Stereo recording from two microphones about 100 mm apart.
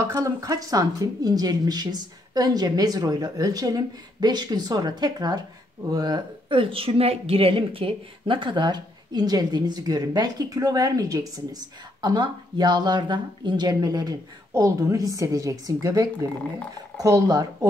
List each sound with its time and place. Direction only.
0.0 s a woman's voice: 35° right (ahead or behind)